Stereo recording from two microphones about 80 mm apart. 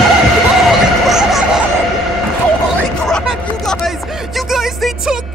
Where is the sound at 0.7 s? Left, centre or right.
Centre.